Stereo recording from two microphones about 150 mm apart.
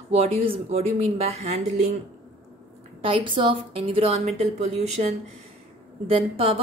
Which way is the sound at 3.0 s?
35° right (ahead or behind).